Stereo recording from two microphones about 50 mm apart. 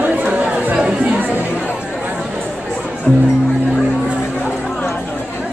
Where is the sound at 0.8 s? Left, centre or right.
Centre.